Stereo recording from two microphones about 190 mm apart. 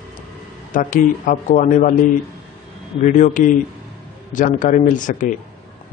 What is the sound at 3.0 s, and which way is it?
Speech, 40° left (ahead or behind).